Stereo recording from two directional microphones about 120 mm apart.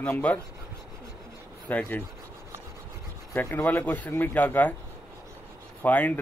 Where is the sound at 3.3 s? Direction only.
20° left (ahead or behind).